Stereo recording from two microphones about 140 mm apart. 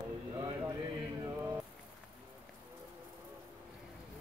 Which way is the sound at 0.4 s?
25° right (ahead or behind).